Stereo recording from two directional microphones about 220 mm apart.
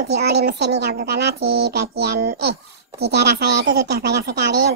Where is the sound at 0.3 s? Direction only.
50° right (ahead or behind).